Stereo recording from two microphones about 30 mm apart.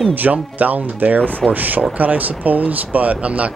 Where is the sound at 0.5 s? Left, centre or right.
Right.